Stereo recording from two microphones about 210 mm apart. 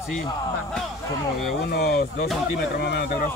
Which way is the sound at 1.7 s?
50° left (ahead or behind).